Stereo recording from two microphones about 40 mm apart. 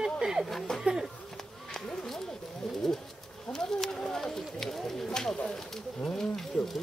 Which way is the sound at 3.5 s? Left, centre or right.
Centre.